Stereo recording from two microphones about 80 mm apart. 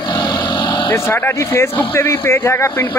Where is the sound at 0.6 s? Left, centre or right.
Left.